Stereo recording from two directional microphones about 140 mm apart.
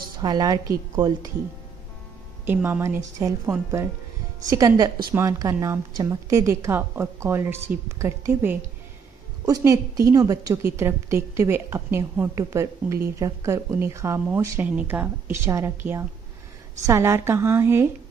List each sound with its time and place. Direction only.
0.2 s a woman's voice: 30° right (ahead or behind)
2.4 s a woman's voice: 15° right (ahead or behind)